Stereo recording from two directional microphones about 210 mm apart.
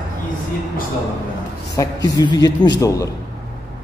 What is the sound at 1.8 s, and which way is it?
A man's voice, 15° left (ahead or behind).